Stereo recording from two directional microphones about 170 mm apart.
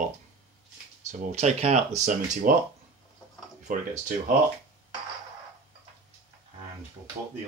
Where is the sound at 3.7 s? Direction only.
50° right (ahead or behind).